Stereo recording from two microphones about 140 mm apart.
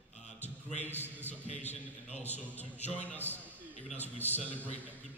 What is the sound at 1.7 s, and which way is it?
Speech, 50° left (ahead or behind).